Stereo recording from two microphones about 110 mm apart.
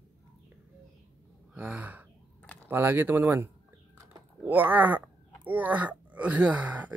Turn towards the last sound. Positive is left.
turn(degrees=-15)  # may be behind; listen again after turning